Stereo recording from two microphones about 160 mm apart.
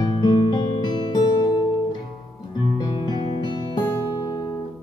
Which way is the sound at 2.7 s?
25° left (ahead or behind).